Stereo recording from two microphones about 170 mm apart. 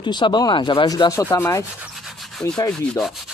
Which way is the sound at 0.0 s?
25° left (ahead or behind).